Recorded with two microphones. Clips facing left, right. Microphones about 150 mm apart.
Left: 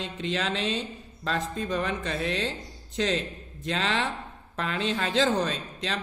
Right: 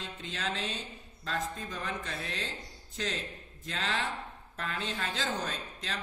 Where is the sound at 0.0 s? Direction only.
90° left.